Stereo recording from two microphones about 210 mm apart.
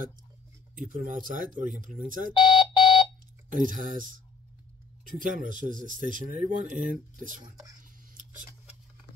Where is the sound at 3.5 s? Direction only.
40° right (ahead or behind).